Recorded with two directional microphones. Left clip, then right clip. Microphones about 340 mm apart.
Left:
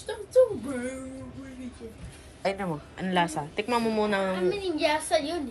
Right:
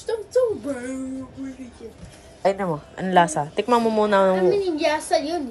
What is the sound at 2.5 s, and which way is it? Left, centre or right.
A woman's voice, centre.